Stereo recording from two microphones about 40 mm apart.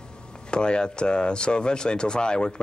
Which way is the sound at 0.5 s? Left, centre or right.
Left.